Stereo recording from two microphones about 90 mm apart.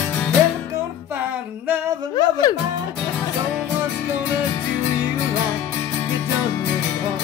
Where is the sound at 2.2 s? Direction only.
45° left (ahead or behind).